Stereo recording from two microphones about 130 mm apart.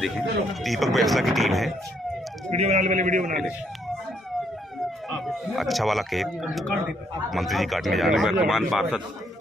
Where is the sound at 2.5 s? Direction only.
55° right (ahead or behind); by 3.3 s 75° right (ahead or behind).